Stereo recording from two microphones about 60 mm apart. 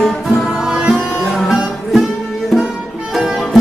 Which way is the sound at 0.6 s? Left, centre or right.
Centre.